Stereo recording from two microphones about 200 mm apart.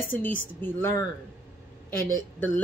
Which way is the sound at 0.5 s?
10° left (ahead or behind).